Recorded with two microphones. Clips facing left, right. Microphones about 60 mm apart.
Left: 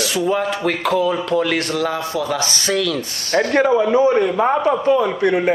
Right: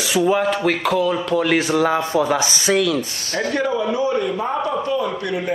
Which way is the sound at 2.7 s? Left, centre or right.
Centre.